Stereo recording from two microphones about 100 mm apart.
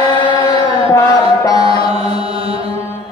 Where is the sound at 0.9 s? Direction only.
30° left (ahead or behind).